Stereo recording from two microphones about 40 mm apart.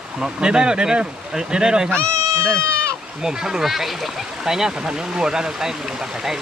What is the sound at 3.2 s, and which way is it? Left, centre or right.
Speech, centre.